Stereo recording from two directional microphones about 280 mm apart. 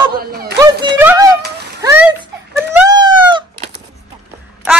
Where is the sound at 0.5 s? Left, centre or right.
Centre.